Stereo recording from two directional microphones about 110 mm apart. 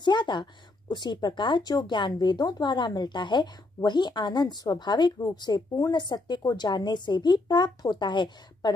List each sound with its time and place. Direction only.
0.0 s speech: 45° left (ahead or behind)